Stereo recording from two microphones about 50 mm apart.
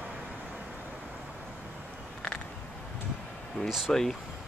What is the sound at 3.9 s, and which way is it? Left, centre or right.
Speech, centre.